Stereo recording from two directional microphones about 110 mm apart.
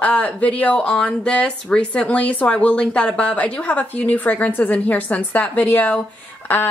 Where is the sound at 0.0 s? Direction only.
15° left (ahead or behind).